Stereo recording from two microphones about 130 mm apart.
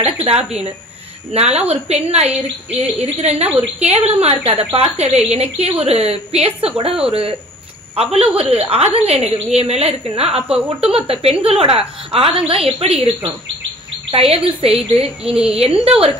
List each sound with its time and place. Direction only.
0.0 s a woman's voice: 50° right (ahead or behind)
15.2 s a woman's voice: 5° right (ahead or behind)
15.6 s a woman's voice: 50° right (ahead or behind)